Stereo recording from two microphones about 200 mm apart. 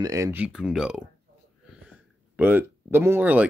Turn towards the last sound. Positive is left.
turn(degrees=-10)  # may be behind; listen again after turning